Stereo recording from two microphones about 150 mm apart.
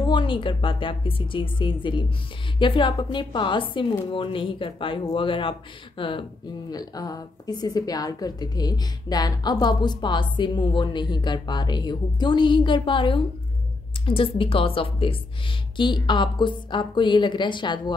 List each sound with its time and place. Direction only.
0.0 s a woman's voice: 30° left (ahead or behind)